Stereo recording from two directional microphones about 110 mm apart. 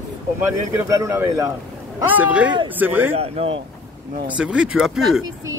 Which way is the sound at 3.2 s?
65° right (ahead or behind).